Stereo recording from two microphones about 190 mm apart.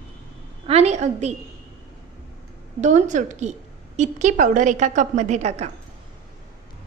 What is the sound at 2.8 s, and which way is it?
A woman's voice, 40° right (ahead or behind).